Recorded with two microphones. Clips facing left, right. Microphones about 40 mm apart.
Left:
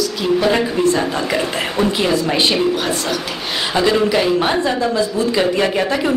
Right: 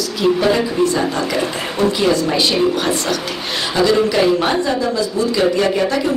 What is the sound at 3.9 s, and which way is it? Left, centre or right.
Speech, centre.